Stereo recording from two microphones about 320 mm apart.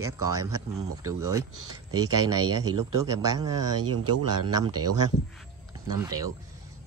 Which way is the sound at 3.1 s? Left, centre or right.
Centre.